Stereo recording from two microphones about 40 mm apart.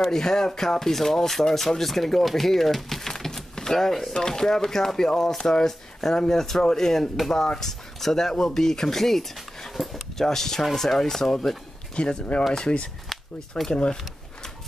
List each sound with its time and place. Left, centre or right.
0.1 s speech: centre
11.9 s speech: left